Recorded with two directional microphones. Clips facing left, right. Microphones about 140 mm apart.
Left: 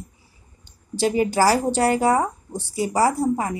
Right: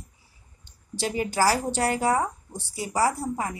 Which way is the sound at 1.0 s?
20° left (ahead or behind).